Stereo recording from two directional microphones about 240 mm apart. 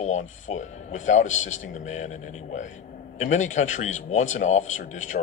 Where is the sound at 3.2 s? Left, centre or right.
Left.